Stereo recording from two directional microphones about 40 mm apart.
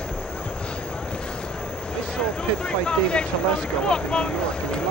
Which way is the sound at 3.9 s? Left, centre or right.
Left.